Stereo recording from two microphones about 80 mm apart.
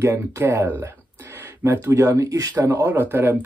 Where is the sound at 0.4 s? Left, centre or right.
Right.